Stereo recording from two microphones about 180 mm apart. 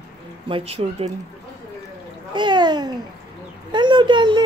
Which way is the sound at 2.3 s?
25° right (ahead or behind).